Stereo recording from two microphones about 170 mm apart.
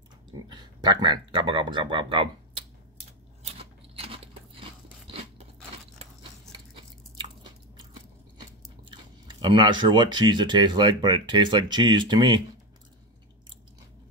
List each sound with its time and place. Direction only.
0.5 s speech: 25° right (ahead or behind)
3.4 s crunch: 35° right (ahead or behind)
6.5 s a sound: 30° right (ahead or behind)
8.4 s speech: 25° right (ahead or behind)